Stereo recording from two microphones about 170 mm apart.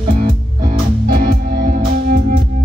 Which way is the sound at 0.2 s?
60° right (ahead or behind).